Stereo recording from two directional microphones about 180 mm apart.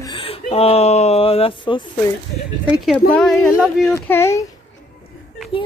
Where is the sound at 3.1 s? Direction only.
5° left (ahead or behind).